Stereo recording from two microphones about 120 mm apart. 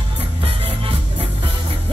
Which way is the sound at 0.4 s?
50° right (ahead or behind).